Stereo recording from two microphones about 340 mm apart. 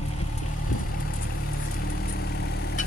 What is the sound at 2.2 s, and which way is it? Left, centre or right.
Vehicle, left.